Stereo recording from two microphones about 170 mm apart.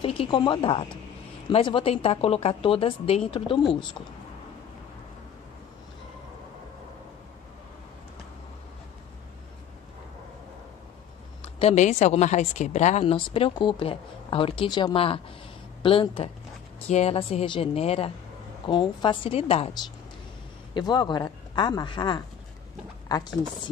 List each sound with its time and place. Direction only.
0.0 s a woman's voice: 30° left (ahead or behind)
11.4 s a woman's voice: 40° left (ahead or behind)
13.0 s a woman's voice: 30° left (ahead or behind)